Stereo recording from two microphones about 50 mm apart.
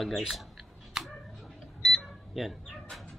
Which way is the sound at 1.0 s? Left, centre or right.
Centre.